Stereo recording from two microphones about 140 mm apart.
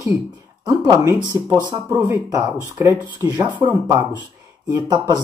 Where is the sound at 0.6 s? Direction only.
30° right (ahead or behind).